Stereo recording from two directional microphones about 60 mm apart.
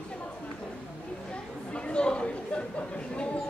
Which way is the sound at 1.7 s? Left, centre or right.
Centre.